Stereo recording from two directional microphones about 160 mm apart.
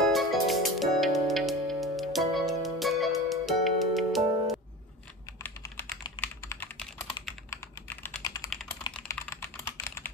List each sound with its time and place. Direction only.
0.0 s music: centre (ahead or behind)
5.4 s typing: 15° left (ahead or behind)
8.5 s typing: centre (ahead or behind)
9.0 s typing: 15° left (ahead or behind)